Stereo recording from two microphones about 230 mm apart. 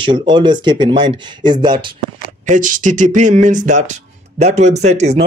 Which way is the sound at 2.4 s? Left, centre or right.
Right.